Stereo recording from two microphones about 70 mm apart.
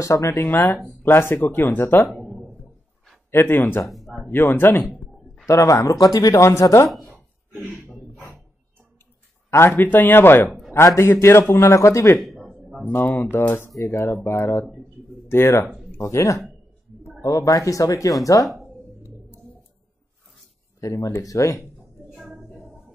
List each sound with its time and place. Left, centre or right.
0.0 s speech: left
0.5 s a man's voice: left
3.3 s a man's voice: left
3.9 s a sound: centre
4.3 s a man's voice: left
5.5 s speech: left
9.5 s a man's voice: left
12.2 s a sound: centre
13.3 s a man's voice: left
17.2 s speech: left
20.8 s speech: left